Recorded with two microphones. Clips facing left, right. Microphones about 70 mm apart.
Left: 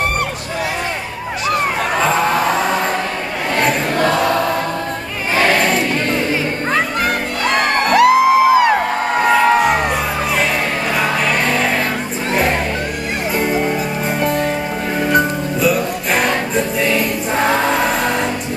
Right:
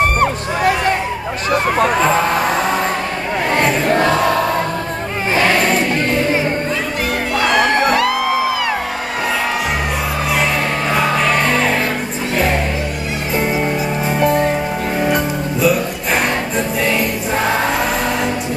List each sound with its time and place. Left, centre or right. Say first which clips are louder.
7.5 s music: even; left
14.2 s music: right 4 dB; right